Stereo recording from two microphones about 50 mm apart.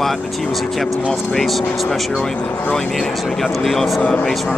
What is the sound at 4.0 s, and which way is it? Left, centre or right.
Speech, centre.